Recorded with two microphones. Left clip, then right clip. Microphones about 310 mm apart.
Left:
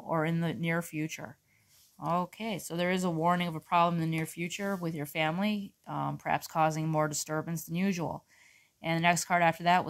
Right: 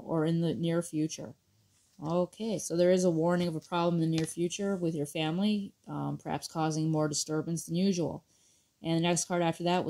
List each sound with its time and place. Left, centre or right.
0.0 s speech: centre